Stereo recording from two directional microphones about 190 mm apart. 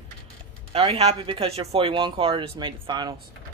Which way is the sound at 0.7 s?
35° right (ahead or behind).